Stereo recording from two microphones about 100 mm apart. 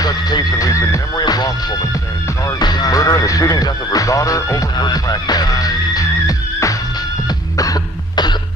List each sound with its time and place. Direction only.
0.0 s music: 45° left (ahead or behind)
1.1 s music: 45° left (ahead or behind)
7.2 s music: 35° left (ahead or behind)